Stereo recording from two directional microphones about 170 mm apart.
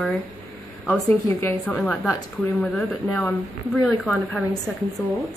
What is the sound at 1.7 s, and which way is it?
Speech, centre (ahead or behind).